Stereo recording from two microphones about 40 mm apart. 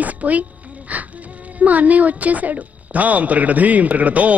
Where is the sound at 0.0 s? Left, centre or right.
Right.